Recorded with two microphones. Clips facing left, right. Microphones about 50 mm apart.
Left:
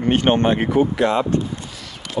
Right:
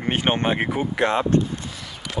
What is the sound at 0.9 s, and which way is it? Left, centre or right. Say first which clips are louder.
Speech: left 2 dB; right.